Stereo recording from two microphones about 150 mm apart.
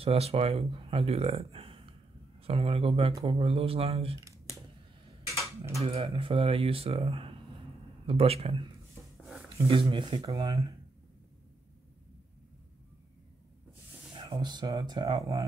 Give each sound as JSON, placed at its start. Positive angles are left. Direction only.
{"t": 0.0, "sound": "speech", "side_deg": -40}
{"t": 5.8, "sound": "speech", "side_deg": -40}
{"t": 9.7, "sound": "speech", "side_deg": -35}
{"t": 14.1, "sound": "speech", "side_deg": -30}